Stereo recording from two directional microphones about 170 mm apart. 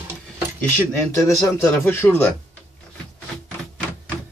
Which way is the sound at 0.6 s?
15° left (ahead or behind).